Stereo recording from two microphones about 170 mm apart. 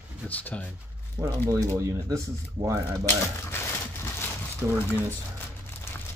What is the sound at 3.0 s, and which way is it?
Crumpling, 15° left (ahead or behind).